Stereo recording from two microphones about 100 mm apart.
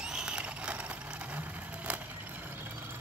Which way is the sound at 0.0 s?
10° right (ahead or behind).